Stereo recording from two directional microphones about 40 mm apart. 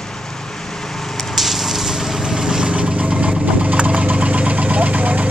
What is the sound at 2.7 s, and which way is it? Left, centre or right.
Engine, right.